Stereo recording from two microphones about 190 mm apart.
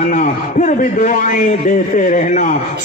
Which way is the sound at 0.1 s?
40° left (ahead or behind).